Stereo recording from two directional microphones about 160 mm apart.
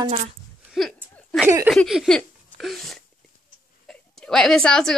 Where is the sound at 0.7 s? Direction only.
Centre (ahead or behind).